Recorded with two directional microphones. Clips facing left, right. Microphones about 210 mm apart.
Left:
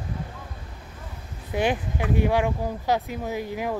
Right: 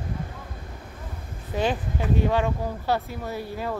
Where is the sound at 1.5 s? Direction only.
15° left (ahead or behind).